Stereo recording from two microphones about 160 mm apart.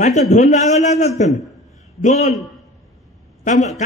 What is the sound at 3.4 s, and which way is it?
Speech, 50° left (ahead or behind).